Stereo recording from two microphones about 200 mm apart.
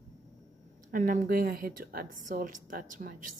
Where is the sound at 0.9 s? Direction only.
40° right (ahead or behind).